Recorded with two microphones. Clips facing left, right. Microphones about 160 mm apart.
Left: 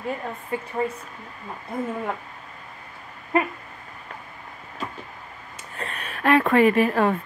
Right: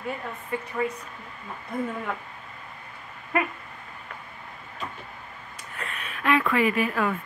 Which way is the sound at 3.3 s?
30° left (ahead or behind).